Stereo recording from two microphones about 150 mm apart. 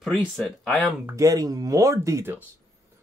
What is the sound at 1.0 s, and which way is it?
Speech, 20° right (ahead or behind).